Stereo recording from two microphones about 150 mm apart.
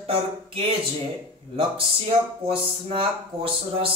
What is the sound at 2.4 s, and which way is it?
Speech, 40° right (ahead or behind).